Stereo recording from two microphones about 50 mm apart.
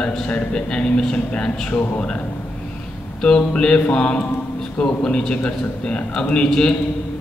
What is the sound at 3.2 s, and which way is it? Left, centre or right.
A man's voice, centre.